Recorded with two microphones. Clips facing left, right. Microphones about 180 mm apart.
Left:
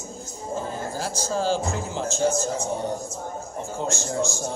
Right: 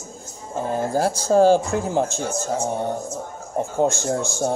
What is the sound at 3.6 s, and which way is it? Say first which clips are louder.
Speech: right 9 dB; 55° right (ahead or behind).